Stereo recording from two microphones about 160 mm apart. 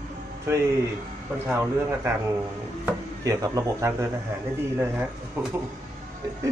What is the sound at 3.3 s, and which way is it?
Speech, 20° right (ahead or behind).